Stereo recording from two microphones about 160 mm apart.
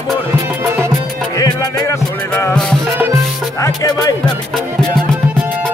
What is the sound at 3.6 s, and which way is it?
Music, 20° left (ahead or behind).